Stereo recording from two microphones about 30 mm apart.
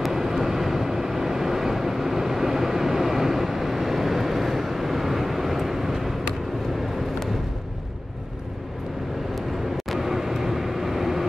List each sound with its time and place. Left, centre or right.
0.0 s vehicle: centre
9.9 s vehicle: centre